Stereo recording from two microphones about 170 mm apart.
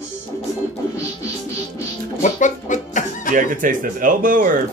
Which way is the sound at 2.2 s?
45° left (ahead or behind).